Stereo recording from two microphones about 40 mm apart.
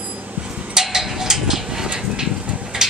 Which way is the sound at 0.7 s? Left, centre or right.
Centre.